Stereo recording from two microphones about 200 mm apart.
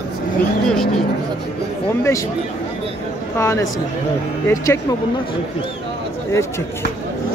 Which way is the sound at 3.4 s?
15° left (ahead or behind).